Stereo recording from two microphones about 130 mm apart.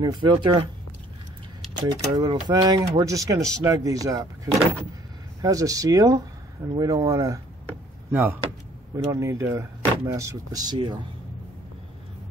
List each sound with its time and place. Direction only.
0.0 s speech: 35° right (ahead or behind)
1.8 s speech: 30° right (ahead or behind)
5.4 s speech: 25° right (ahead or behind)